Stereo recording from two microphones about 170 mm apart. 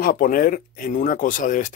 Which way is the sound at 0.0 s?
60° left (ahead or behind).